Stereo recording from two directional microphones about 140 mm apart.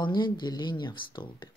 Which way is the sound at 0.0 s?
30° left (ahead or behind).